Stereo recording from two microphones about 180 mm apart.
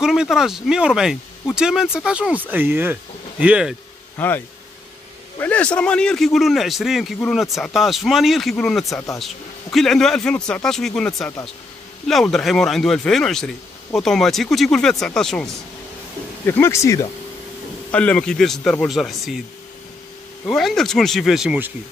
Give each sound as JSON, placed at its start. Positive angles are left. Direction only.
{"t": 0.0, "sound": "a man's voice", "side_deg": -5}
{"t": 4.2, "sound": "speech", "side_deg": 10}
{"t": 5.4, "sound": "a man's voice", "side_deg": 5}
{"t": 20.4, "sound": "a man's voice", "side_deg": 5}